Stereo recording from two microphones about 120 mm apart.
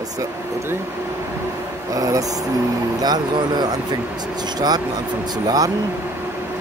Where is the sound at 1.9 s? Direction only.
30° right (ahead or behind).